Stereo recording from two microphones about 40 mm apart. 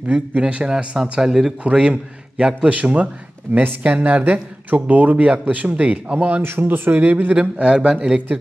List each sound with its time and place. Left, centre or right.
0.0 s speech: right
0.7 s speech: centre
1.6 s a man's voice: right
3.5 s speech: right
5.1 s speech: right
5.4 s speech: right
6.4 s speech: right
7.3 s a man's voice: right